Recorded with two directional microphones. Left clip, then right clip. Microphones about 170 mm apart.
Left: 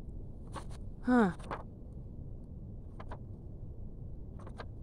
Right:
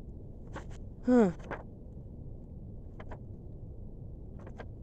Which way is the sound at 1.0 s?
15° left (ahead or behind).